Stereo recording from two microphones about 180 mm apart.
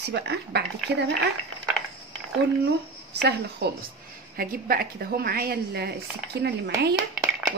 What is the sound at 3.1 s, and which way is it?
Speech, 70° right (ahead or behind).